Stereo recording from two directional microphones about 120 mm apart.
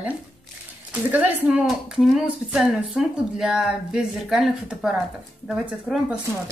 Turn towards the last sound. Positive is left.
turn(degrees=-5)  # may be behind; listen again after turning